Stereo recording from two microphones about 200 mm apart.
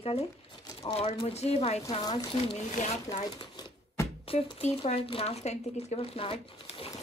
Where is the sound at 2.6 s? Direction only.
35° left (ahead or behind).